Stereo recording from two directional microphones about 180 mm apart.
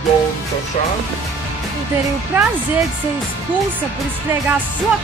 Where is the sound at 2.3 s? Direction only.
10° right (ahead or behind).